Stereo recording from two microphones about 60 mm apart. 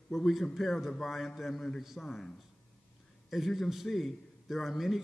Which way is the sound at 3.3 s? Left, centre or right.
Centre.